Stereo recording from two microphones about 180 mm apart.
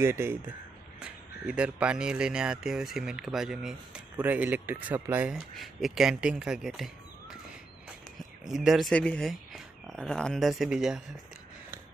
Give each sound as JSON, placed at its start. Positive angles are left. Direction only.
{"t": 0.0, "sound": "speech", "side_deg": -15}
{"t": 8.5, "sound": "speech", "side_deg": 0}